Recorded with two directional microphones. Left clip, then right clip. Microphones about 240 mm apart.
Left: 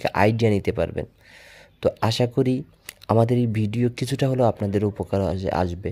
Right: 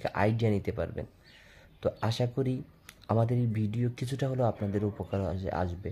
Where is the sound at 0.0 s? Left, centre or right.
Left.